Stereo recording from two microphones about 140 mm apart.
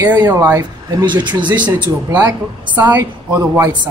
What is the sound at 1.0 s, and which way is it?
Speech, 35° right (ahead or behind).